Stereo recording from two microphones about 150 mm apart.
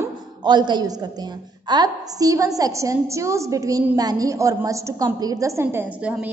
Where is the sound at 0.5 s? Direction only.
30° right (ahead or behind).